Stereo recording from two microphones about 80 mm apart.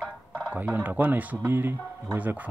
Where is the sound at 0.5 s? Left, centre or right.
Right.